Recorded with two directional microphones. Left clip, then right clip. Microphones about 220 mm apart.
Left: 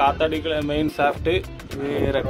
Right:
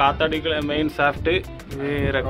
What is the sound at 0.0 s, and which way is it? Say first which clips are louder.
Speech: even; 10° left (ahead or behind).